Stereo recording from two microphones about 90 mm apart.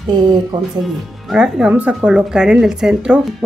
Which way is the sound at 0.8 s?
5° right (ahead or behind).